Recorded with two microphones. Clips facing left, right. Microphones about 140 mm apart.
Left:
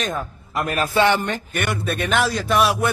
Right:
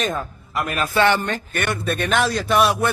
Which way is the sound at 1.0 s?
15° left (ahead or behind).